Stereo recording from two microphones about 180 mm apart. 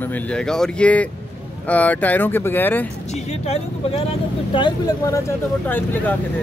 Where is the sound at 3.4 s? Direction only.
35° left (ahead or behind).